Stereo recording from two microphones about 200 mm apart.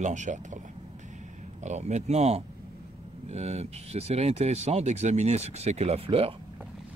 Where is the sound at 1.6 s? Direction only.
35° right (ahead or behind).